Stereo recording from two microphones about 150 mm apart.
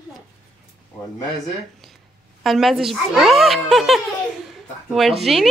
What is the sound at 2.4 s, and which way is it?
Speech, centre (ahead or behind).